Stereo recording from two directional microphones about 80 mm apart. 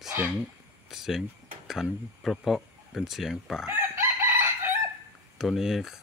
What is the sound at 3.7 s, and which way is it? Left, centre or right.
Chicken, right.